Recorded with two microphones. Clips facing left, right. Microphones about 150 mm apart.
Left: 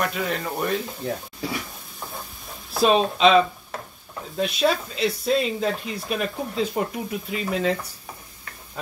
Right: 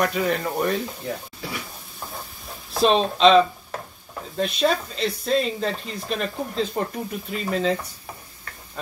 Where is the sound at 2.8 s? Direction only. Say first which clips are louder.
Even; 5° left (ahead or behind).